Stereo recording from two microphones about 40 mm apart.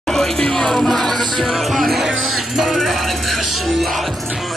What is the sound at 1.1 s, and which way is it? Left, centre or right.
Music, centre.